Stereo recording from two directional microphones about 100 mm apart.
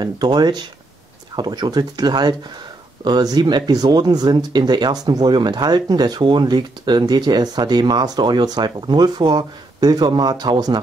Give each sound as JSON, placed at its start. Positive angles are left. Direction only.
{"t": 0.0, "sound": "speech", "side_deg": -45}